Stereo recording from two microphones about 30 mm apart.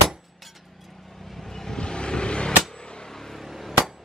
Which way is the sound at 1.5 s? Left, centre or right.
Centre.